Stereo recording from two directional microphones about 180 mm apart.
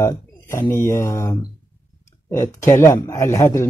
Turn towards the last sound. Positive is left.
turn(degrees=15)  # may be behind; listen again after turning